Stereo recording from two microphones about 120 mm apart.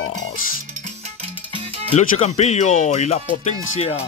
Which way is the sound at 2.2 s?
65° left (ahead or behind).